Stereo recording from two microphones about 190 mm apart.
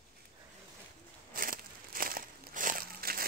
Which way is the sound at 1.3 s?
45° right (ahead or behind).